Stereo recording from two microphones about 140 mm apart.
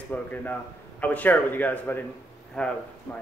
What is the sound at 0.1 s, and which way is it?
A man's voice, 10° left (ahead or behind).